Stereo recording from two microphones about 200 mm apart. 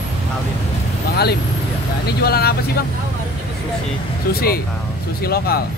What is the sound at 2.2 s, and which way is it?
Speech, 50° left (ahead or behind).